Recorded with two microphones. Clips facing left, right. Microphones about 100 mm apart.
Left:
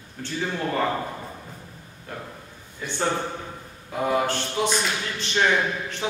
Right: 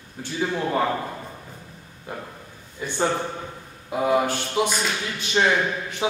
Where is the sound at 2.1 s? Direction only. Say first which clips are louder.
Right 2 dB; 15° right (ahead or behind).